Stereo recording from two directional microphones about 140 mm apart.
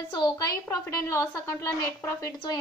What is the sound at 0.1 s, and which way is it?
Speech, 30° left (ahead or behind).